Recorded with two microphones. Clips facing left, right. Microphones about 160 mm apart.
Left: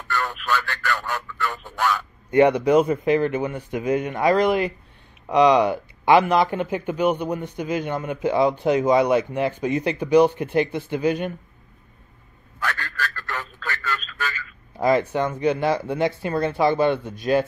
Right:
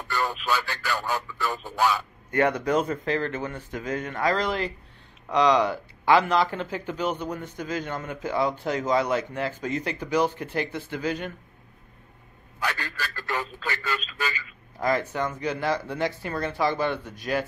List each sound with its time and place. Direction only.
0.1 s radio: 10° right (ahead or behind)
2.3 s speech: 15° left (ahead or behind)
12.5 s speech: 10° right (ahead or behind)
14.8 s speech: 20° left (ahead or behind)